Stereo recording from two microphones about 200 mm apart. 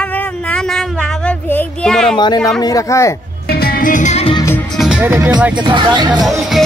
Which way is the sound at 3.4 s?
50° left (ahead or behind).